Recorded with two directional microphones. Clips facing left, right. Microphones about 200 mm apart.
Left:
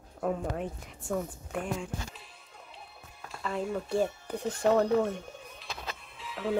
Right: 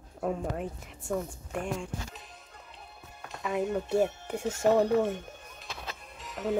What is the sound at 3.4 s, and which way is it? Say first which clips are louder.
Speech: right 3 dB; 5° right (ahead or behind).